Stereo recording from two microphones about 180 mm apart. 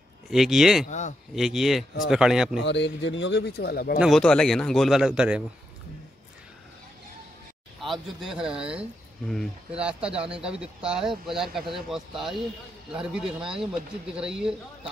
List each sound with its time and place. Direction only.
0.3 s speech: centre (ahead or behind)
0.8 s a sound: 40° left (ahead or behind)
1.3 s speech: centre (ahead or behind)
2.6 s a man's voice: 80° left; by 4.0 s 60° left (ahead or behind)
4.0 s speech: 5° left (ahead or behind)
7.8 s speech: centre (ahead or behind)